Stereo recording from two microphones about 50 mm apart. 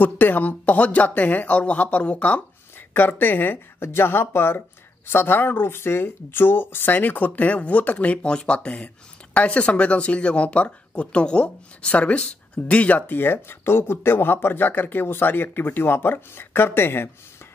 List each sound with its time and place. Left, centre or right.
0.0 s speech: left
2.9 s speech: left
7.0 s speech: left